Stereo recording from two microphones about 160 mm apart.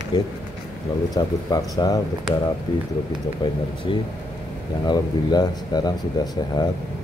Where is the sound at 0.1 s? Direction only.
30° left (ahead or behind).